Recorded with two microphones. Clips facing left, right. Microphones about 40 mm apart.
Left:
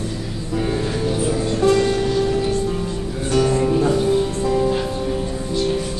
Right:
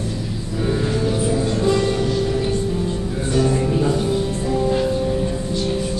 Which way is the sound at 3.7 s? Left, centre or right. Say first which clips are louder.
Left 2 dB; centre.